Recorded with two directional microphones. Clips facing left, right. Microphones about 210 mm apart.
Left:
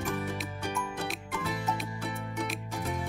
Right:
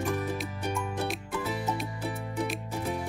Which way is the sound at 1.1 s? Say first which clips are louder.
Right 3 dB; centre (ahead or behind).